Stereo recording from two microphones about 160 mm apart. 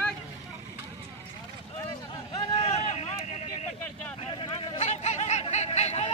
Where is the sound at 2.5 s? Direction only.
45° left (ahead or behind).